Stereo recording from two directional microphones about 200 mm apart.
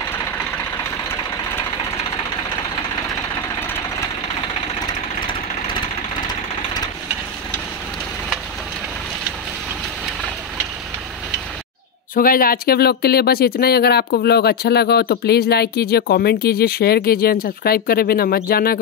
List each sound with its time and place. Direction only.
4.8 s engine: 25° left (ahead or behind)
12.2 s speech: 45° left (ahead or behind)